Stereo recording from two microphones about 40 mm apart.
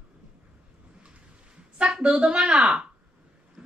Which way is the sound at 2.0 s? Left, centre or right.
Right.